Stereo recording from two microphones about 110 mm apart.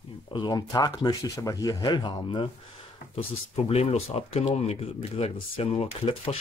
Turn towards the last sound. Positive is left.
turn(degrees=55)  # may be behind; listen again after turning